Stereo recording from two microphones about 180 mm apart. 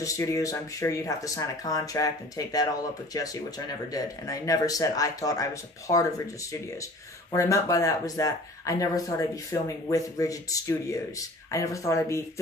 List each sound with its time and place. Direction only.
0.0 s speech: 20° left (ahead or behind)
7.3 s speech: 15° left (ahead or behind)